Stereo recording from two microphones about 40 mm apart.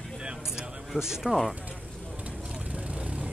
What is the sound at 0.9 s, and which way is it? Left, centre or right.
Speech, centre.